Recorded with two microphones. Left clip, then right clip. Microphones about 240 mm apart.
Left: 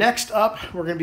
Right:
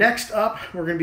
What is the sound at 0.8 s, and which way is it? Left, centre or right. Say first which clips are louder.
Speech: left 2 dB; centre.